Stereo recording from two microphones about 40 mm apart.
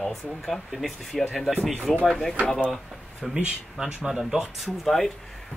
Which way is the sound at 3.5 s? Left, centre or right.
Centre.